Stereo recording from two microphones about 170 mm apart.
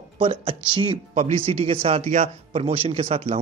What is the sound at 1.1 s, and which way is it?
Speech, 45° right (ahead or behind).